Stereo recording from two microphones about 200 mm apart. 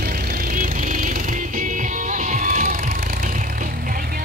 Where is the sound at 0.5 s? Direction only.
40° right (ahead or behind).